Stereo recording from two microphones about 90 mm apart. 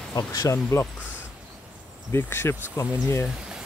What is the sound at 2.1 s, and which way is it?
Speech, 25° left (ahead or behind).